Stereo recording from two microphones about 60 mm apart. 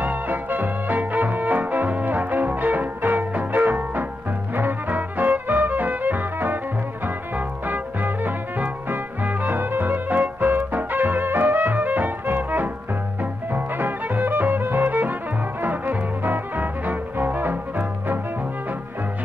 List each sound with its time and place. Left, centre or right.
0.0 s music: right